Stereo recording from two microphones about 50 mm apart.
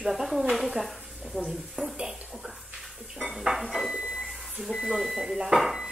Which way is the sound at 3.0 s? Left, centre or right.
Centre.